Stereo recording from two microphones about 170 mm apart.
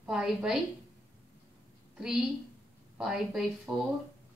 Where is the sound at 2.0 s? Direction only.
5° right (ahead or behind).